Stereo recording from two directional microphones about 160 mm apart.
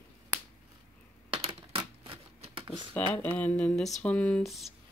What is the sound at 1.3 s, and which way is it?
Typing, 35° right (ahead or behind).